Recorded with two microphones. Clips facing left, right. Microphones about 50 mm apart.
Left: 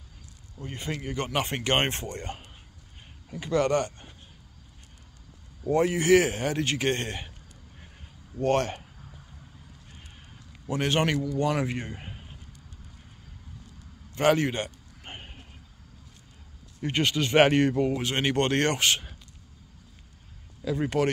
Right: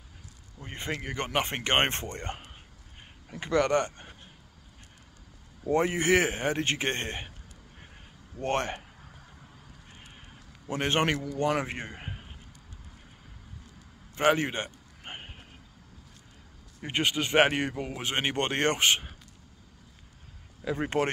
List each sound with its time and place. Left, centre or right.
0.6 s a man's voice: right
5.7 s speech: right
8.4 s speech: right
10.7 s speech: right
14.1 s a sound: right
16.8 s speech: centre
17.9 s speech: centre
20.6 s speech: right